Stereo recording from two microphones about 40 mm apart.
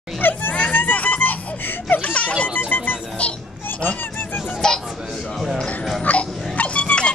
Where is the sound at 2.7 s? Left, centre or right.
Left.